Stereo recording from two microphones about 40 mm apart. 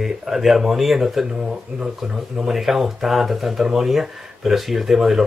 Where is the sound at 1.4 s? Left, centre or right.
Centre.